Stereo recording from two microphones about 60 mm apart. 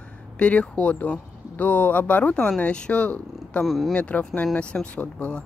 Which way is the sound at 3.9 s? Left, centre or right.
Left.